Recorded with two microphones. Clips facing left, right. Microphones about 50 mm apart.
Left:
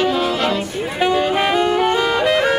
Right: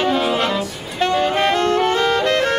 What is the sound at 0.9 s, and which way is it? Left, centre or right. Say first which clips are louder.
Saxophone: even; centre.